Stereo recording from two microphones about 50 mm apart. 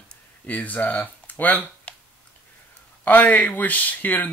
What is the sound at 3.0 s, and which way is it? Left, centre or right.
Speech, left.